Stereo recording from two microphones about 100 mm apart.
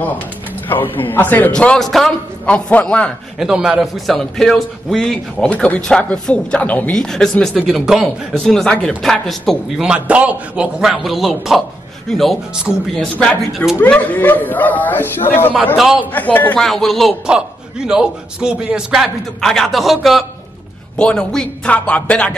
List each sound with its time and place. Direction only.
0.7 s a man's voice: 20° left (ahead or behind)
3.3 s a man's voice: 5° right (ahead or behind)
9.8 s a man's voice: 10° right (ahead or behind); by 15.5 s 20° left (ahead or behind)
15.8 s a man's voice: 5° right (ahead or behind)
16.1 s speech: 15° left (ahead or behind)
16.5 s a man's voice: 5° left (ahead or behind)
17.3 s a man's voice: 10° right (ahead or behind); by 22.3 s 10° left (ahead or behind)